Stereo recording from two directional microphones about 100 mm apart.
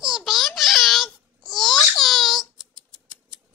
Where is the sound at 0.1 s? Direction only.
Centre (ahead or behind).